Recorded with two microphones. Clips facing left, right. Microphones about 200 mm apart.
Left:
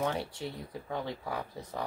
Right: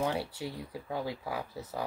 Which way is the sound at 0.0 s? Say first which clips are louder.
Right 1 dB; 10° right (ahead or behind).